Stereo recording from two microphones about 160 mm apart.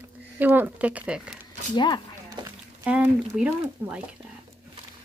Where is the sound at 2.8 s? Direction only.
10° right (ahead or behind).